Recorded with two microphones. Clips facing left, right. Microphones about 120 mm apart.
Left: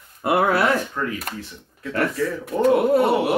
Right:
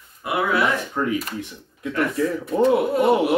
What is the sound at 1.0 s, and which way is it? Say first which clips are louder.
Speech: right 3 dB; 20° right (ahead or behind).